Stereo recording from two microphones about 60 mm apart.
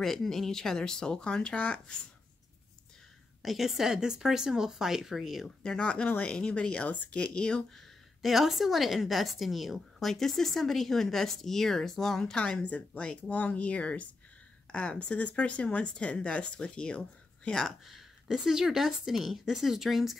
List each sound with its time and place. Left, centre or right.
0.0 s speech: centre
3.4 s a woman's voice: centre
5.6 s speech: centre
8.2 s a woman's voice: centre
17.5 s a woman's voice: centre